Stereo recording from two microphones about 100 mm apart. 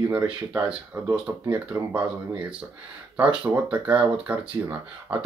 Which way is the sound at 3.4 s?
15° right (ahead or behind).